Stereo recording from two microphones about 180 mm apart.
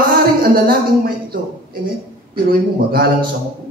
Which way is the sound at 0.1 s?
55° right (ahead or behind).